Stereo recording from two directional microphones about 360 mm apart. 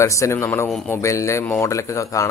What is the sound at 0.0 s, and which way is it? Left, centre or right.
A man's voice, centre.